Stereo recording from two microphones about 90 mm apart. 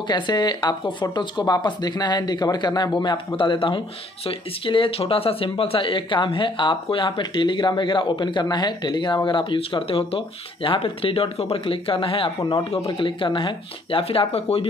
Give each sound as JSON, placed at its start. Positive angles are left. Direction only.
{"t": 0.1, "sound": "speech", "side_deg": 55}
{"t": 3.3, "sound": "speech", "side_deg": 70}
{"t": 12.4, "sound": "speech", "side_deg": 60}